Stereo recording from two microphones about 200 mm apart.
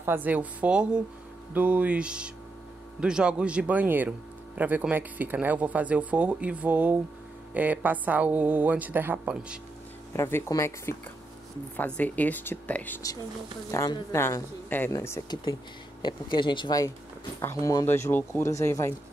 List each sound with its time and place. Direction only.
0.0 s speech: 10° right (ahead or behind)
10.1 s speech: 10° left (ahead or behind)